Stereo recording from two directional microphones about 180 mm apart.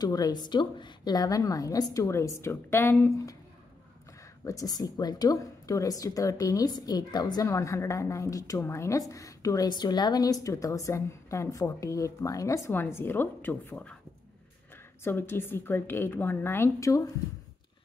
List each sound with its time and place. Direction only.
0.0 s a woman's voice: 20° left (ahead or behind)
4.5 s a woman's voice: 20° left (ahead or behind)
15.0 s a woman's voice: 10° left (ahead or behind)